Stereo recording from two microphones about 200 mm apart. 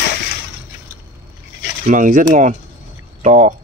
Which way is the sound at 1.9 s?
40° right (ahead or behind).